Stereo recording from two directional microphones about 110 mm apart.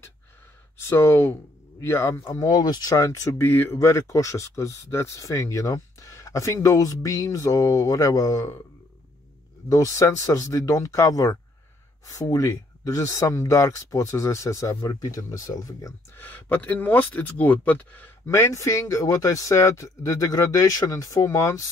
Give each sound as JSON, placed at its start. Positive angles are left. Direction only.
{"t": 0.8, "sound": "speech", "side_deg": 25}
{"t": 9.7, "sound": "speech", "side_deg": 30}
{"t": 16.2, "sound": "speech", "side_deg": 20}